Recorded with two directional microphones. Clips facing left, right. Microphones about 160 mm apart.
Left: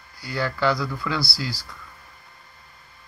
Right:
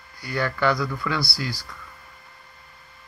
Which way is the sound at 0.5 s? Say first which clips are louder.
Even; 30° left (ahead or behind).